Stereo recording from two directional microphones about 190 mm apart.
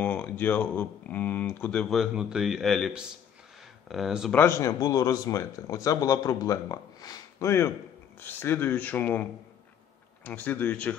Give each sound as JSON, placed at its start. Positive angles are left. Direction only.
{"t": 0.0, "sound": "speech", "side_deg": 10}
{"t": 4.4, "sound": "speech", "side_deg": 15}
{"t": 10.2, "sound": "speech", "side_deg": 10}